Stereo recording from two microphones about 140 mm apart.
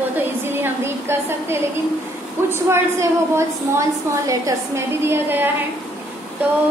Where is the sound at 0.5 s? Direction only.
15° right (ahead or behind).